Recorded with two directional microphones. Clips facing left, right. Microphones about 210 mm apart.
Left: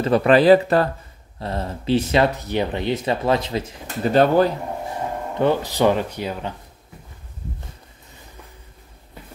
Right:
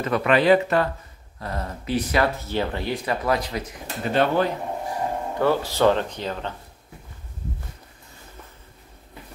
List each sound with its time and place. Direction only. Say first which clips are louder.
0.0 s speech: left 5 dB; 30° left (ahead or behind)
4.1 s speech: left 5 dB; 40° left (ahead or behind)
5.4 s speech: left 2 dB; 20° left (ahead or behind)